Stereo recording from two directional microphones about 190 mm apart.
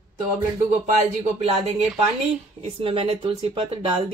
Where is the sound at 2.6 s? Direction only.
30° right (ahead or behind).